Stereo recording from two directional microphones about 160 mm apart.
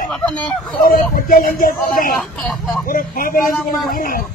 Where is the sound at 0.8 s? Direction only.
65° left (ahead or behind).